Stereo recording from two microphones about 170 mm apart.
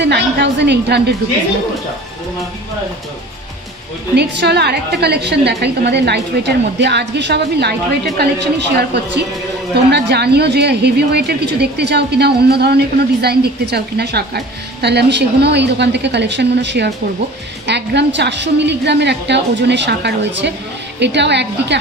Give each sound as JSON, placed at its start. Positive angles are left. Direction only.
{"t": 0.0, "sound": "a woman's voice", "side_deg": -90}
{"t": 4.1, "sound": "a woman's voice", "side_deg": -80}